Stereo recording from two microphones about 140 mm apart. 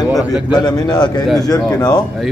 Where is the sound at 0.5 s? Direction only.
30° left (ahead or behind).